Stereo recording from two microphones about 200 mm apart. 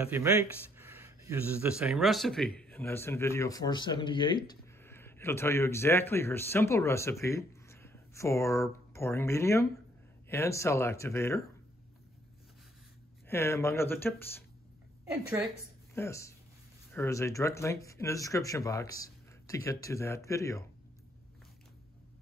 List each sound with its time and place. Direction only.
0.0 s speech: 10° right (ahead or behind); by 4.4 s 25° left (ahead or behind)
4.5 s speech: 10° left (ahead or behind)
13.3 s speech: 15° left (ahead or behind)
15.9 s speech: 15° left (ahead or behind)